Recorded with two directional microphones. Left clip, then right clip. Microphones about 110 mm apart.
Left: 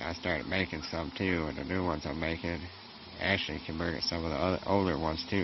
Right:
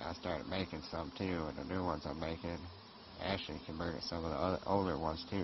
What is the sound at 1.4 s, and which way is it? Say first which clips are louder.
Speech: left 6 dB; centre (ahead or behind).